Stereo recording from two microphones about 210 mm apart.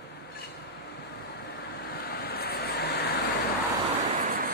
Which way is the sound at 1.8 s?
45° left (ahead or behind).